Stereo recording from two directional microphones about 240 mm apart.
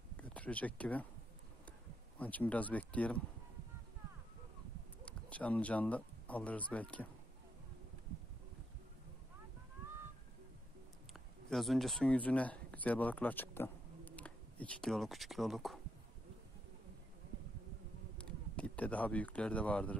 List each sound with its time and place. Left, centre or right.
0.2 s speech: centre
2.1 s speech: centre
5.0 s speech: centre
11.1 s speech: centre
18.1 s speech: centre